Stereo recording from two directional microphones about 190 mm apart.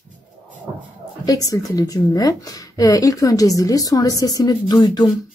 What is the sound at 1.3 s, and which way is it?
A woman's voice, 20° left (ahead or behind).